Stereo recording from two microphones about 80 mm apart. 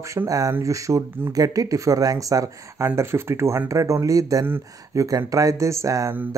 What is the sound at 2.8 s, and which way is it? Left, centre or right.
Speech, right.